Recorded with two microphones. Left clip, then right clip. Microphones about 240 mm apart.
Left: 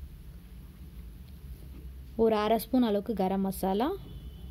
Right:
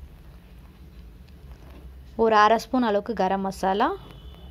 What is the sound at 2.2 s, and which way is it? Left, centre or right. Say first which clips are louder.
A woman's voice: right 8 dB; centre.